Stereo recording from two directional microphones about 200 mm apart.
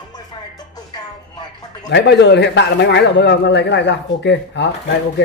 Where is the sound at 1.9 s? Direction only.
55° left (ahead or behind).